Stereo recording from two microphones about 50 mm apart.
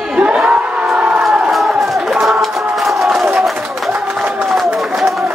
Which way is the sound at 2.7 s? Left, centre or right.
Centre.